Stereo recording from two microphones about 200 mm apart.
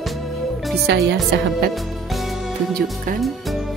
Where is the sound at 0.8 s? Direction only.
65° right (ahead or behind).